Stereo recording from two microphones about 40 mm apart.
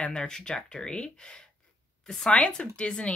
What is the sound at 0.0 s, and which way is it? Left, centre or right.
Speech, left.